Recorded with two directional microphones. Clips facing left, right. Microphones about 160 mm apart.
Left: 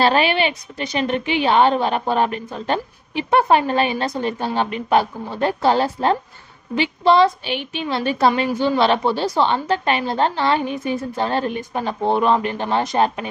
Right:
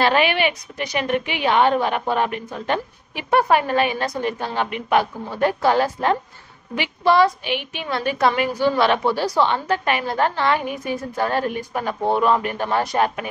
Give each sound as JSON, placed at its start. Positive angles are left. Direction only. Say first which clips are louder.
{"t": 0.0, "sound": "a woman's voice", "louder": "left 1 dB", "side_deg": 30}